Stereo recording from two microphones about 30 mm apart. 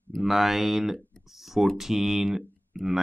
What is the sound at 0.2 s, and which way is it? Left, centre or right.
Speech, centre.